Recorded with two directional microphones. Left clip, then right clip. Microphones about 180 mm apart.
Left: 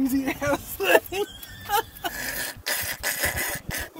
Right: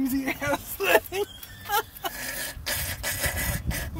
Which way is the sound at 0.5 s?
30° right (ahead or behind).